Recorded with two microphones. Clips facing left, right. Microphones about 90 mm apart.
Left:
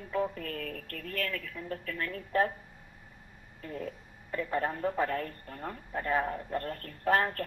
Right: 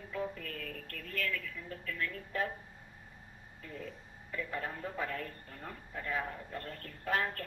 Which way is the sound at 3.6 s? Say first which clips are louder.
Left 7 dB; 50° left (ahead or behind).